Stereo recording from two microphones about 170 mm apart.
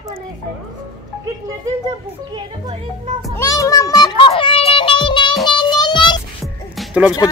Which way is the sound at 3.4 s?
20° left (ahead or behind).